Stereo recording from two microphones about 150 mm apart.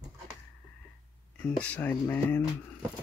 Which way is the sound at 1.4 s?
10° left (ahead or behind).